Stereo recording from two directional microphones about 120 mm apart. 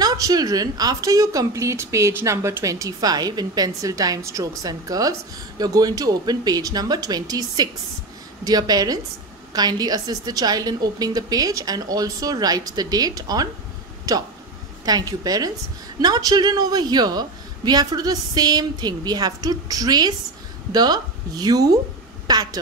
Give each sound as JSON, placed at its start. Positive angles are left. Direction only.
{"t": 0.0, "sound": "a woman's voice", "side_deg": -30}